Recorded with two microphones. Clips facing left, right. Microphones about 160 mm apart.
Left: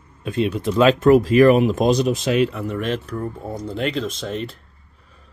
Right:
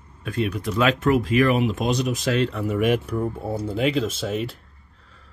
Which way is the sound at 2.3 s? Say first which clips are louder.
Left 2 dB; 10° left (ahead or behind).